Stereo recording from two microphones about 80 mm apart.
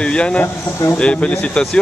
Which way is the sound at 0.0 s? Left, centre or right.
Centre.